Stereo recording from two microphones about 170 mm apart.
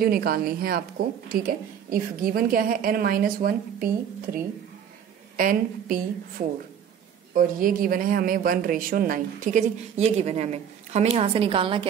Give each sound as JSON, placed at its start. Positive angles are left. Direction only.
{"t": 0.0, "sound": "a woman's voice", "side_deg": -65}
{"t": 5.4, "sound": "a woman's voice", "side_deg": -55}
{"t": 7.3, "sound": "speech", "side_deg": -55}